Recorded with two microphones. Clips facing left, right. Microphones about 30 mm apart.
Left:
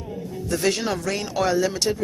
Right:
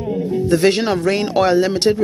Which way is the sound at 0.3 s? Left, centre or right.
Right.